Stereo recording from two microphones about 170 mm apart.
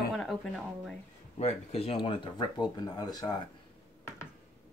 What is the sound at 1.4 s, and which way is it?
Speech, 40° left (ahead or behind).